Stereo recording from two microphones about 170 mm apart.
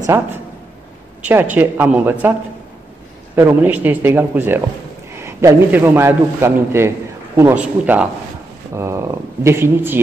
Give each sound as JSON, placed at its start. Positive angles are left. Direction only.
{"t": 0.0, "sound": "a man's voice", "side_deg": -15}
{"t": 3.3, "sound": "a man's voice", "side_deg": -10}